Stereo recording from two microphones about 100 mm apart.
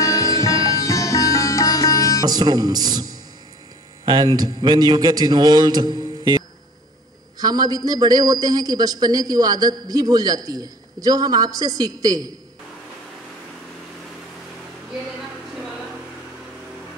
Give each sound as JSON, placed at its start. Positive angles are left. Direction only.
{"t": 0.0, "sound": "sitar", "side_deg": 35}
{"t": 2.2, "sound": "a man's voice", "side_deg": -45}